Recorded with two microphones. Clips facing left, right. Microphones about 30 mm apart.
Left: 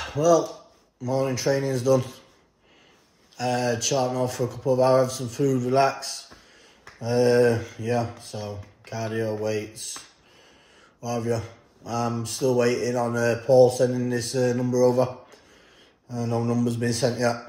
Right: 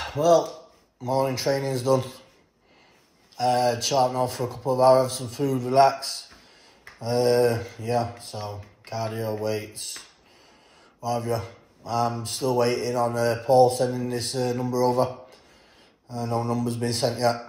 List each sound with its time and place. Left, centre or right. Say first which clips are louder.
0.0 s speech: even; right
3.3 s speech: right 3 dB; right
7.0 s a sound: left 2 dB; right
7.2 s speech: left 1 dB; right
11.0 s speech: even; right
16.1 s speech: left 1 dB; right